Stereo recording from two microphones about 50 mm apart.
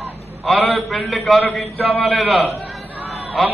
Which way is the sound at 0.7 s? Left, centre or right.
Centre.